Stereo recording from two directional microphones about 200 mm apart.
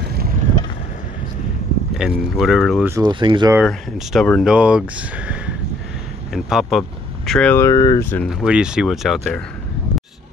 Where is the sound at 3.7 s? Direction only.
Centre (ahead or behind).